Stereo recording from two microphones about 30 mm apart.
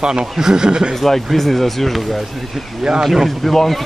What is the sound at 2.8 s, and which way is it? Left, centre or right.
Speech, right.